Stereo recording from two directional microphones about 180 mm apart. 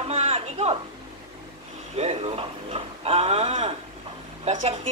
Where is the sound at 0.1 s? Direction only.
35° right (ahead or behind).